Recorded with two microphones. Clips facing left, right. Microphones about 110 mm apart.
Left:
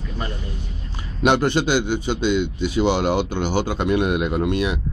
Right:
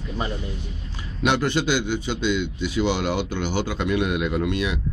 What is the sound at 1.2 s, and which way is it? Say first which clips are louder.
A man's voice: left 4 dB; 45° left (ahead or behind).